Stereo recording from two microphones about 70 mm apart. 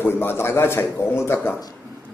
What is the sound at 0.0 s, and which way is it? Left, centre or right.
A man's voice, left.